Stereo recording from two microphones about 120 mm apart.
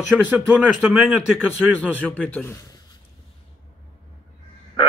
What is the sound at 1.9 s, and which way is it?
Speech, 15° left (ahead or behind).